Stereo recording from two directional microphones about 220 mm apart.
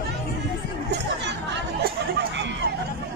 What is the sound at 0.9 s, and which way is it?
Chatter, 50° right (ahead or behind).